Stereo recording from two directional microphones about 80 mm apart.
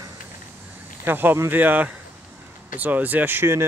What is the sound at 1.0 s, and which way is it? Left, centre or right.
Speech, right.